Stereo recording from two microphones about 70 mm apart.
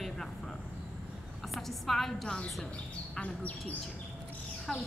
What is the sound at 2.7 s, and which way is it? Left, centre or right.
Speech, centre.